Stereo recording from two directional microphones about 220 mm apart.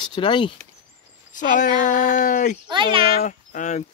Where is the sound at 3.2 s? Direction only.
35° left (ahead or behind).